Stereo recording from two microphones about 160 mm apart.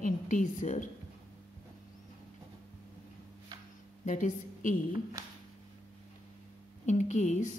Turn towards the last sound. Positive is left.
turn(degrees=45)  # may be behind; listen again after turning